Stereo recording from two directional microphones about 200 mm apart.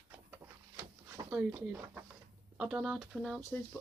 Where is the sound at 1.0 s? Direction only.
15° right (ahead or behind).